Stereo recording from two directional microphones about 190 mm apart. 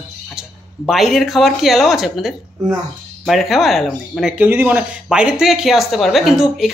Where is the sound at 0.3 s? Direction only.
Centre (ahead or behind).